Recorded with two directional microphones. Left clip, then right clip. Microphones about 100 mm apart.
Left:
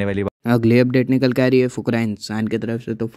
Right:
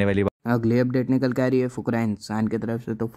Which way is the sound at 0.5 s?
50° left (ahead or behind).